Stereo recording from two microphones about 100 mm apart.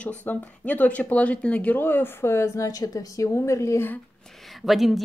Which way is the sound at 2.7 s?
35° left (ahead or behind).